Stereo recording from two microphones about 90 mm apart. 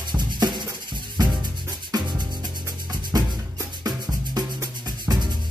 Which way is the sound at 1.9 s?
45° right (ahead or behind).